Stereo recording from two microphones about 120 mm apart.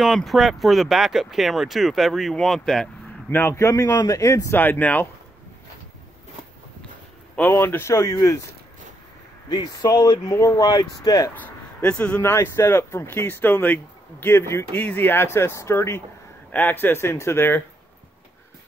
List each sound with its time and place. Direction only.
0.0 s speech: centre (ahead or behind)
3.3 s speech: 20° left (ahead or behind)
7.3 s speech: 15° left (ahead or behind)
9.5 s speech: 35° left (ahead or behind)
11.4 s speech: 10° left (ahead or behind)